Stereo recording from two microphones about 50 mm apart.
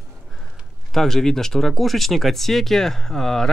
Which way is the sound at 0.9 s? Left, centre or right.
Centre.